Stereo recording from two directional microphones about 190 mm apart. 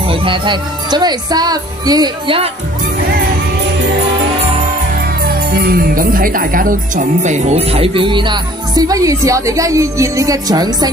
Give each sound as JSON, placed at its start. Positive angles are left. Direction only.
{"t": 0.0, "sound": "speech", "side_deg": -30}
{"t": 5.2, "sound": "speech", "side_deg": -50}